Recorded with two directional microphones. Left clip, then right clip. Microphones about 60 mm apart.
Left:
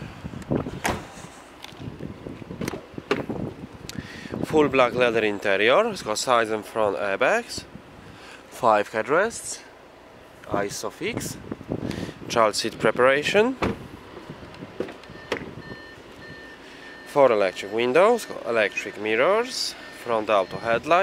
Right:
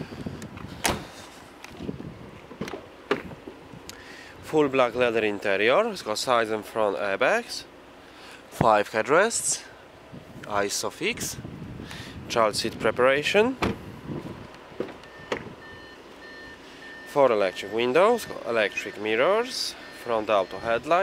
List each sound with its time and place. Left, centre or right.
0.8 s vehicle: right
2.6 s a sound: left
4.5 s speech: centre
9.1 s speech: right
11.9 s speech: centre
14.8 s a sound: left
17.1 s speech: centre